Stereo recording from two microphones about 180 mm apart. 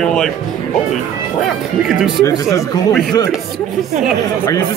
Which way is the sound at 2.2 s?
20° left (ahead or behind).